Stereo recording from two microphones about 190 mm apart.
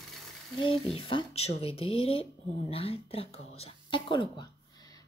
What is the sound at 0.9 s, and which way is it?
Speech, 30° left (ahead or behind).